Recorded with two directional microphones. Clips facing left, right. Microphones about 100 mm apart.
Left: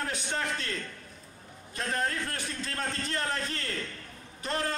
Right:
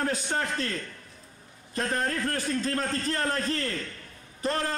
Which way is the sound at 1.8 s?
40° right (ahead or behind).